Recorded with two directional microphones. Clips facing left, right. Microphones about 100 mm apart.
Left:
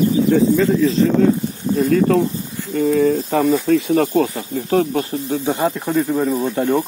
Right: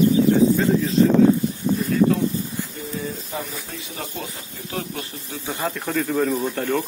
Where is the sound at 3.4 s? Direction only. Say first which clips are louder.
Left 19 dB; 60° left (ahead or behind).